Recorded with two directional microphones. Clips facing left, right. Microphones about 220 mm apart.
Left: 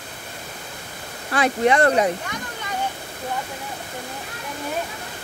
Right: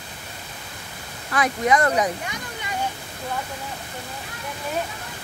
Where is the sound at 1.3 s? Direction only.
30° left (ahead or behind).